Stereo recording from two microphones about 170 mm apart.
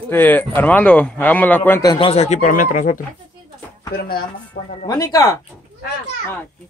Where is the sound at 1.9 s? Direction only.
30° left (ahead or behind); by 3.0 s 50° left (ahead or behind).